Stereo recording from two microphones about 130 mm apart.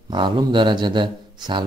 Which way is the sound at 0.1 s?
35° right (ahead or behind).